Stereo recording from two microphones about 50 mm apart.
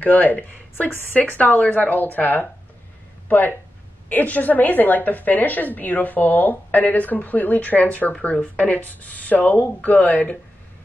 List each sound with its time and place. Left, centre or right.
0.0 s a woman's voice: left